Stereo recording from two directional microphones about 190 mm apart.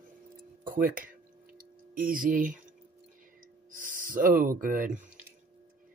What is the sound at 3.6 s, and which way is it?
Speech, 45° right (ahead or behind).